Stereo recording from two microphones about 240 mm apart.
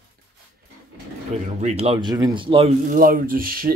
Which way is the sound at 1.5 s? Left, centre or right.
Right.